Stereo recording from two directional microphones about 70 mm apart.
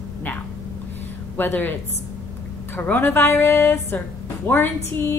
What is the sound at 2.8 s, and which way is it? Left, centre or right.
Speech, left.